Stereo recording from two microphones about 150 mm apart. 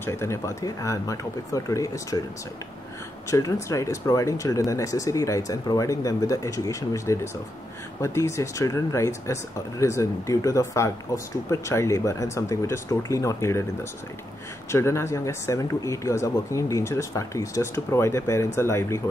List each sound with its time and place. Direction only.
0.0 s speech: 15° left (ahead or behind)
3.3 s speech: 20° left (ahead or behind)
14.7 s speech: 20° left (ahead or behind)